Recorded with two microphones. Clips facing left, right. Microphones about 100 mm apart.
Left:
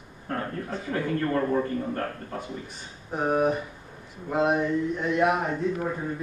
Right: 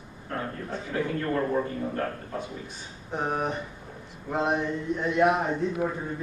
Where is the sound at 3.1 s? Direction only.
5° left (ahead or behind).